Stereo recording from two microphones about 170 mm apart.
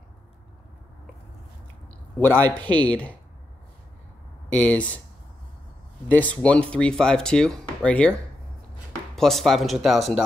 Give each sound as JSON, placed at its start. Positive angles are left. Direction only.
{"t": 2.1, "sound": "a man's voice", "side_deg": 10}
{"t": 4.5, "sound": "speech", "side_deg": 10}
{"t": 6.0, "sound": "speech", "side_deg": 10}